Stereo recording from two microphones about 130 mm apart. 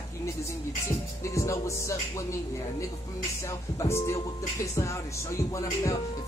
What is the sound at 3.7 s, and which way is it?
Speech, 20° left (ahead or behind).